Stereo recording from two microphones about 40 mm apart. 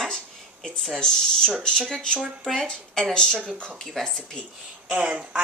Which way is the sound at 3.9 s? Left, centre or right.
Centre.